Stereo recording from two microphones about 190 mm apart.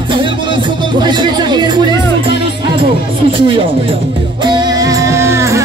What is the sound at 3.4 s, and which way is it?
Speech, 30° right (ahead or behind).